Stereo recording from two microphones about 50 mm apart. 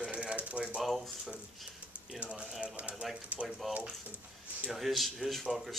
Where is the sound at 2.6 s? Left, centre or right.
Right.